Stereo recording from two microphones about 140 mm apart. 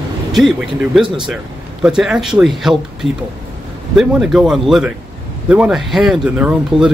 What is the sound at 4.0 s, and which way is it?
Speech, 5° right (ahead or behind).